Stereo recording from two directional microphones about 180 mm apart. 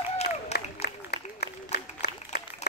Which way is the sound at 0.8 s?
65° left (ahead or behind).